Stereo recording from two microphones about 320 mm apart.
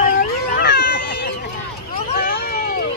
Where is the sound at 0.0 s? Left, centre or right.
Left.